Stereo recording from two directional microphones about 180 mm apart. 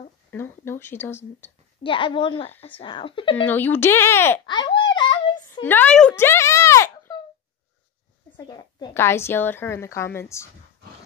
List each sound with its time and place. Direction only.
0.3 s a woman's voice: 10° left (ahead or behind)
1.8 s a woman's voice: 25° left (ahead or behind)
3.4 s a woman's voice: 10° left (ahead or behind)
4.5 s babbling: 25° left (ahead or behind)
5.6 s a sound: 10° left (ahead or behind)
8.4 s a woman's voice: 25° left (ahead or behind)